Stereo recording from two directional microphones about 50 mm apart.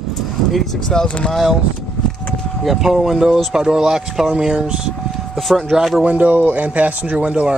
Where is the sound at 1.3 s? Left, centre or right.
Centre.